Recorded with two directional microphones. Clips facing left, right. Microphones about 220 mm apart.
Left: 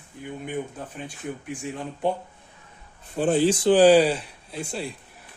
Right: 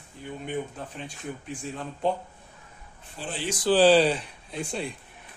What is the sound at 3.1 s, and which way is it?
Speech, 50° left (ahead or behind).